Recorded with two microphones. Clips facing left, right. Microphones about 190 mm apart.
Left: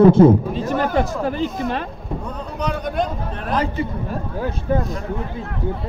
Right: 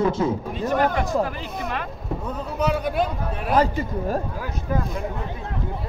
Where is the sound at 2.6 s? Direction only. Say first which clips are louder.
Even; 5° right (ahead or behind).